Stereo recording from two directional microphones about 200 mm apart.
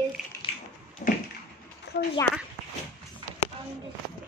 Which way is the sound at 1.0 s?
40° left (ahead or behind).